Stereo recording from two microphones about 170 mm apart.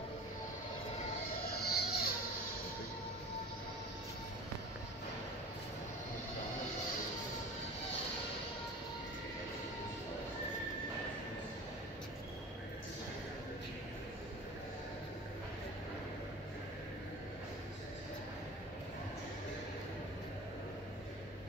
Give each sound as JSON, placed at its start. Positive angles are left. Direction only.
{"t": 1.3, "sound": "music", "side_deg": 65}